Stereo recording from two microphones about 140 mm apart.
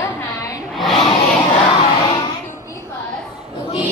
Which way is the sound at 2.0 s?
30° left (ahead or behind).